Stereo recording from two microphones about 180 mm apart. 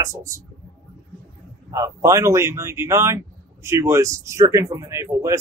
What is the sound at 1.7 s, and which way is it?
Speech, 15° right (ahead or behind).